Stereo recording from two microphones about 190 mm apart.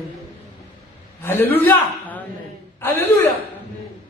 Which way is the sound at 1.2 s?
10° left (ahead or behind).